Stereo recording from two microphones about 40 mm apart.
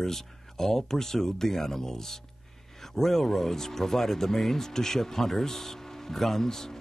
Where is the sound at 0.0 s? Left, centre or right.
Centre.